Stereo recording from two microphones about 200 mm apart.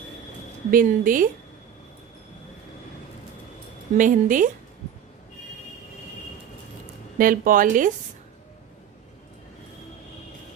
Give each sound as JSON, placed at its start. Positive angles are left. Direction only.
{"t": 0.7, "sound": "speech", "side_deg": -45}
{"t": 3.9, "sound": "a woman's voice", "side_deg": -40}
{"t": 7.2, "sound": "speech", "side_deg": -45}